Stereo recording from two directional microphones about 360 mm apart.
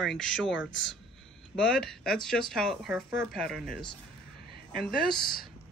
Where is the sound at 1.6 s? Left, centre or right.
Centre.